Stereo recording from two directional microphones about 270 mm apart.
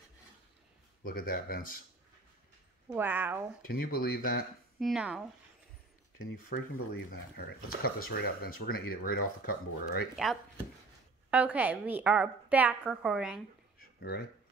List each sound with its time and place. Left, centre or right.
1.0 s speech: left
2.9 s a woman's voice: centre
3.6 s speech: left
4.7 s a woman's voice: centre
7.1 s speech: left
10.1 s a woman's voice: centre
13.9 s speech: left